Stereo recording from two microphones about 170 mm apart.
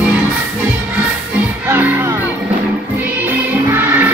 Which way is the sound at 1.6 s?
15° right (ahead or behind).